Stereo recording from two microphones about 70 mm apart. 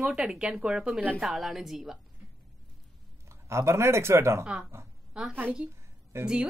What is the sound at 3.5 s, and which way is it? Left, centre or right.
Speech, right.